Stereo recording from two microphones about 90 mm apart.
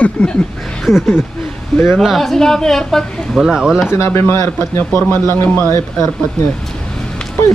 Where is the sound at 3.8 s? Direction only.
25° left (ahead or behind).